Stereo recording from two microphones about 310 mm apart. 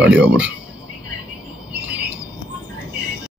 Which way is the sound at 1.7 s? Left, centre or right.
Centre.